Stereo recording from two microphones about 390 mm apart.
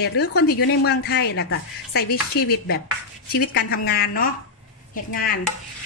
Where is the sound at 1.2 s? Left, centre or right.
Left.